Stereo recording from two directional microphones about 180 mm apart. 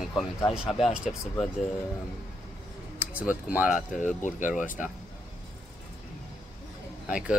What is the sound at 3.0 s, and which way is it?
Speech, 10° right (ahead or behind).